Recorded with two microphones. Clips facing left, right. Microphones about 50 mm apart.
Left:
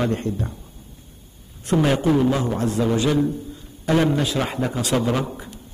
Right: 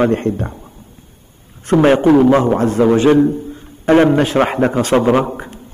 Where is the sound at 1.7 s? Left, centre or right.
Right.